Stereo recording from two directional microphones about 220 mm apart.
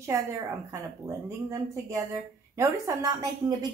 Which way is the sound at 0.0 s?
15° right (ahead or behind).